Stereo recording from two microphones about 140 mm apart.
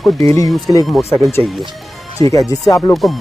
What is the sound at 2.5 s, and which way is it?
Speech, 25° left (ahead or behind).